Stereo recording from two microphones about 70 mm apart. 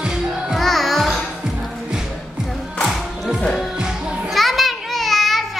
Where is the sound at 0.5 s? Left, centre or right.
Centre.